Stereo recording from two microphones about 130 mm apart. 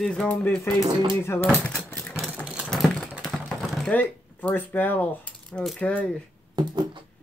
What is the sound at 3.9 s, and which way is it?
Speech, 15° left (ahead or behind).